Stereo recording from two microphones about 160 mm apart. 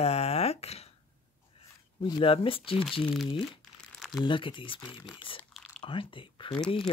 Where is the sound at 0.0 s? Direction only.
40° left (ahead or behind).